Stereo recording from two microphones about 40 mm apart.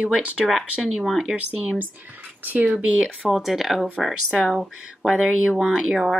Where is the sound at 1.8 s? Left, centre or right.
Right.